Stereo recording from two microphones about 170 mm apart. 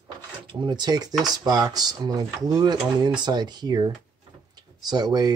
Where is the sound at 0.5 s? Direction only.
25° right (ahead or behind).